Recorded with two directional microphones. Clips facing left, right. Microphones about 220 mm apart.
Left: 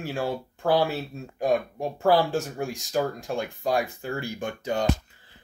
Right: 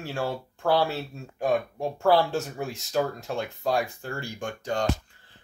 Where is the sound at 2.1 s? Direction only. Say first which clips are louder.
Left 1 dB; centre (ahead or behind).